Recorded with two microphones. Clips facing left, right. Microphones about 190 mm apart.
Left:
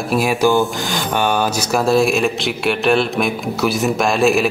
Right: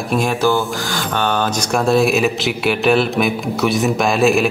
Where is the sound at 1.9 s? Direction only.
Centre (ahead or behind).